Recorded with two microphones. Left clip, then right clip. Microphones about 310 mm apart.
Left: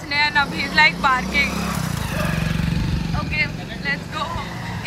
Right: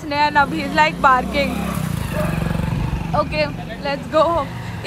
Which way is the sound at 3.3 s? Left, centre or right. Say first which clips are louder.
Right 1 dB; centre.